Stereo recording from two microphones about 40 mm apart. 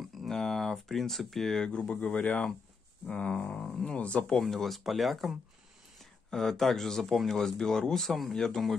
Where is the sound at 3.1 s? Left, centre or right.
Left.